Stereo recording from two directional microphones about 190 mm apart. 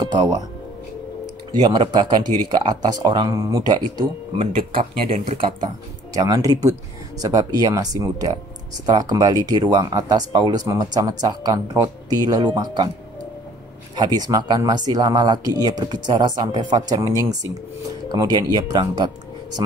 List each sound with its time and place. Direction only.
0.0 s speech: 20° right (ahead or behind)
1.5 s speech: 20° right (ahead or behind)
13.9 s speech: 20° right (ahead or behind)